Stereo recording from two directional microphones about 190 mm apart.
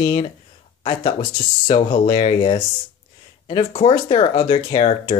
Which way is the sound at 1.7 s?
30° left (ahead or behind).